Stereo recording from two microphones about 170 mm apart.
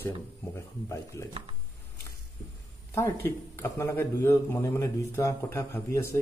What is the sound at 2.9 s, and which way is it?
A man's voice, 15° left (ahead or behind).